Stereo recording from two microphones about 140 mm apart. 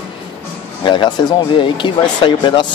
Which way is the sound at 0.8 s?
35° left (ahead or behind).